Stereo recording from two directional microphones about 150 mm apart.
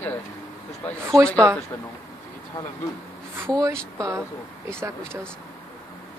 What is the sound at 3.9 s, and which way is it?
Speech, 20° right (ahead or behind).